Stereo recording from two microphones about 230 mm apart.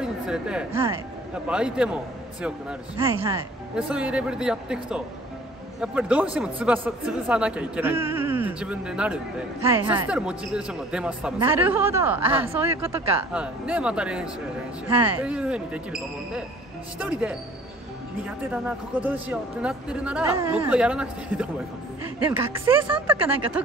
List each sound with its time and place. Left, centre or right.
0.0 s speech: centre
3.0 s speech: centre
3.7 s a woman's voice: centre